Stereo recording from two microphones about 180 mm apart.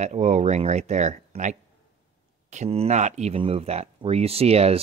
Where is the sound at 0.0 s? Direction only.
40° right (ahead or behind).